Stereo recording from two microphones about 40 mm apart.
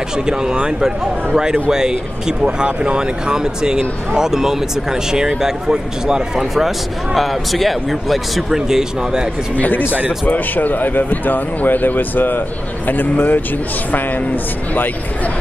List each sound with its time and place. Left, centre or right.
0.3 s speech: centre
8.5 s speech: centre
9.6 s speech: left